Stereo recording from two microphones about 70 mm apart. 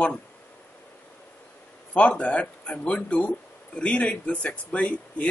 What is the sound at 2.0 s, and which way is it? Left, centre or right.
Speech, centre.